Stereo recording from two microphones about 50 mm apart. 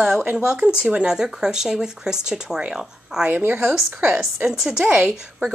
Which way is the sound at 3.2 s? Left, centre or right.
Right.